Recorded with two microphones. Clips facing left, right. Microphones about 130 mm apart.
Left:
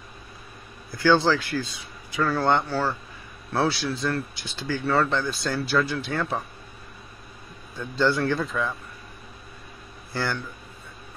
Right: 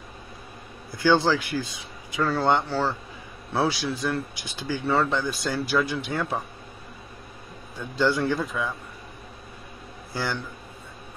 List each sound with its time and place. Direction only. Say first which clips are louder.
0.9 s speech: left 1 dB; 15° right (ahead or behind)
7.7 s speech: even; 15° right (ahead or behind)
10.1 s speech: left 1 dB; 15° right (ahead or behind)